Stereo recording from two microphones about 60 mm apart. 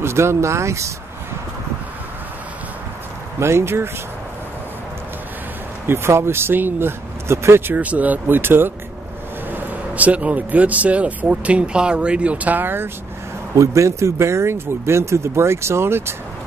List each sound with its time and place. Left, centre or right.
0.0 s speech: right
3.3 s speech: right
5.9 s speech: right
7.2 s speech: right
7.7 s speech: right
13.6 s speech: right